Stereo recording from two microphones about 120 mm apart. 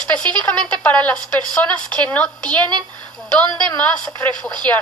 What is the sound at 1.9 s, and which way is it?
Speech, 10° left (ahead or behind).